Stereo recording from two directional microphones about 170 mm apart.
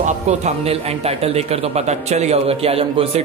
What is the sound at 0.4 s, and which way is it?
Speech, 40° right (ahead or behind).